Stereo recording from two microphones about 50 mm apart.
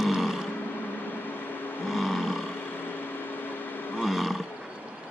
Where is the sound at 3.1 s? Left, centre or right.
Left.